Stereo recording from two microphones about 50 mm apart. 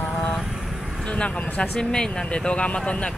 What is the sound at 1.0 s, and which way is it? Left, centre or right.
Speech, left.